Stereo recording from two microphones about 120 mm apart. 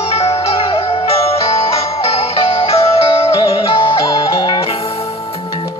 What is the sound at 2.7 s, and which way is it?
Music, 50° left (ahead or behind).